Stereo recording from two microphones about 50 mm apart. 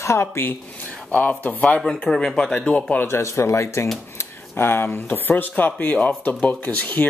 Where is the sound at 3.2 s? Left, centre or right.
Left.